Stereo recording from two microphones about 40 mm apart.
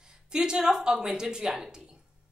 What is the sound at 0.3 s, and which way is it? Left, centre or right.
A woman's voice, centre.